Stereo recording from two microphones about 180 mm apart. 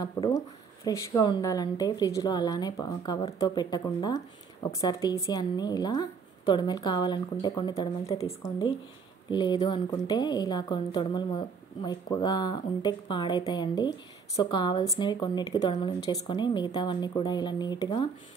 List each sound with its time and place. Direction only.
0.0 s a woman's voice: 20° left (ahead or behind)